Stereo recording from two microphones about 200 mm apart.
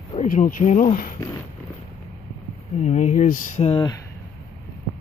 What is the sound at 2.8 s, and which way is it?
Speech, 35° left (ahead or behind).